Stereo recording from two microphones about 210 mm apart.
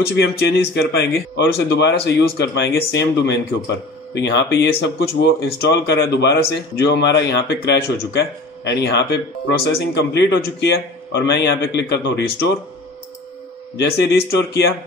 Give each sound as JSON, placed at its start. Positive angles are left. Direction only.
{"t": 0.0, "sound": "speech", "side_deg": 50}
{"t": 13.7, "sound": "speech", "side_deg": 50}